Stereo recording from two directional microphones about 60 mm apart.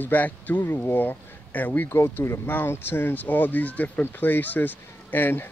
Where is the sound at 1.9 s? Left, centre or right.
Left.